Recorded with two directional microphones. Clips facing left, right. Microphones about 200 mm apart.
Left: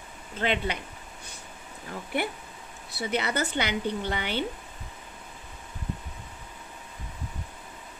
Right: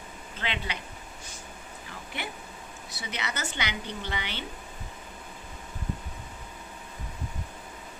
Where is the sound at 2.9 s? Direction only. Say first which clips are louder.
Left 8 dB; 55° left (ahead or behind).